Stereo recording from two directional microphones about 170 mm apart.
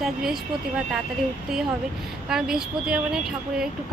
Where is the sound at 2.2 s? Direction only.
5° right (ahead or behind).